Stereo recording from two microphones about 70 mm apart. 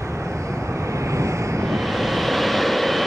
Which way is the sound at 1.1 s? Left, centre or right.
Right.